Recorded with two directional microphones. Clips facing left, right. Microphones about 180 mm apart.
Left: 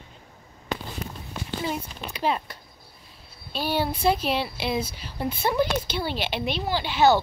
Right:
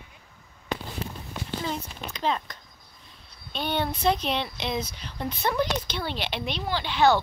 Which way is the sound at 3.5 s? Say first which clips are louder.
Left 2 dB; 5° left (ahead or behind).